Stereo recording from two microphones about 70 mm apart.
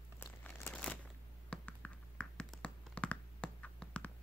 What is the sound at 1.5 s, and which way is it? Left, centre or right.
Computer keyboard, centre.